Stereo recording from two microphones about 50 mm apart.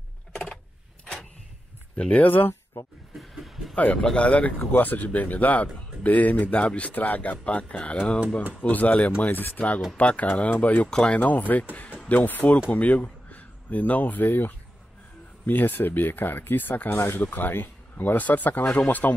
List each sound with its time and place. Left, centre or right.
2.0 s speech: left
3.2 s a sound: centre
3.7 s speech: left
4.3 s speech: left
9.2 s speech: left
10.9 s speech: centre
11.1 s speech: left